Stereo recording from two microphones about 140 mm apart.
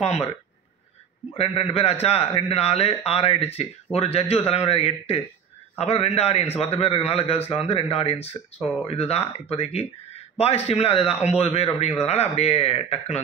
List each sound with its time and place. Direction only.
0.0 s a man's voice: 50° left (ahead or behind)
1.3 s a man's voice: 45° left (ahead or behind)